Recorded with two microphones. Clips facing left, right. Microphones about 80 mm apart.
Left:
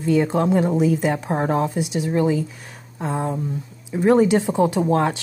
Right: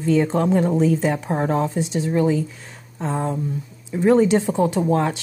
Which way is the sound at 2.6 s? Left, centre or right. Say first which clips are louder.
Even; centre.